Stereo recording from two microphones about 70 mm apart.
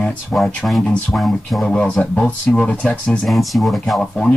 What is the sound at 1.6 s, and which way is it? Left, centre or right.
Speech, centre.